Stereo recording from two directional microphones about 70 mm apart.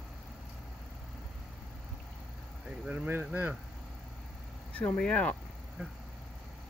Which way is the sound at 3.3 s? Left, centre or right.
Right.